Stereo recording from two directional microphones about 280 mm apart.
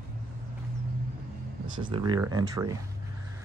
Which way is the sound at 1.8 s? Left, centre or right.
Centre.